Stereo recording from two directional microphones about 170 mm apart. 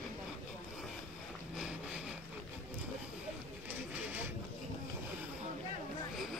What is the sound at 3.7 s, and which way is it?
Printer, 10° right (ahead or behind).